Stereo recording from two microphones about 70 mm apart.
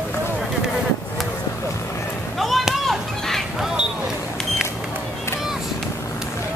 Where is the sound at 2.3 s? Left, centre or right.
Centre.